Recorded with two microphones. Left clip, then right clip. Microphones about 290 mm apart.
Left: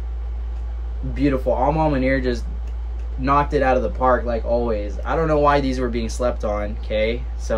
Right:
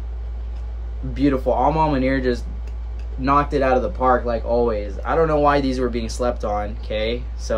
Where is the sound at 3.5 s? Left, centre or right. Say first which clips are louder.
Even; centre.